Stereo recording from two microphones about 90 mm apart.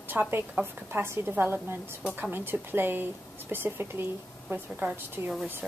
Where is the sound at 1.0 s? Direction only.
30° right (ahead or behind).